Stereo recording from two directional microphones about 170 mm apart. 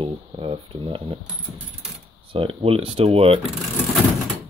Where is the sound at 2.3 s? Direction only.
35° right (ahead or behind).